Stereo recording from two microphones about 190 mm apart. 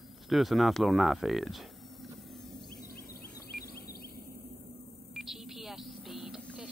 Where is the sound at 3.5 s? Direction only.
50° left (ahead or behind).